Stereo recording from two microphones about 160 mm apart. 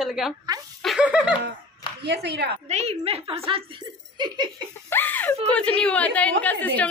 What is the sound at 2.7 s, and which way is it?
Speech, 40° right (ahead or behind).